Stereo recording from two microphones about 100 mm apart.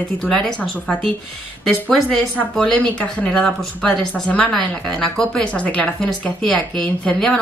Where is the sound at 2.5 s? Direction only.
10° left (ahead or behind).